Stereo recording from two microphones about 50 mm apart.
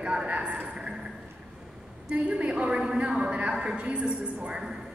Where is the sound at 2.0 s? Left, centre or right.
Right.